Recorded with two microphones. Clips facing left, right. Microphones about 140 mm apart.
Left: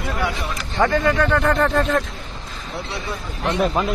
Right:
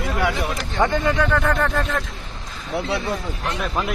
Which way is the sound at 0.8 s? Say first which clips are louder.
Left 3 dB; 20° right (ahead or behind).